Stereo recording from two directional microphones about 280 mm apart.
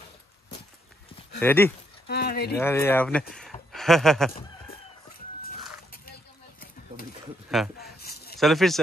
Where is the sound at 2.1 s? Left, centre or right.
Left.